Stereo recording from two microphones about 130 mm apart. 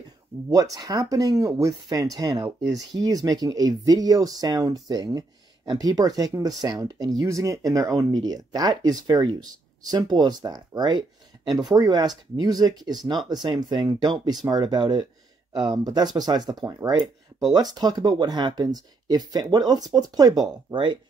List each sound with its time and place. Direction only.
0.5 s speech: 25° right (ahead or behind)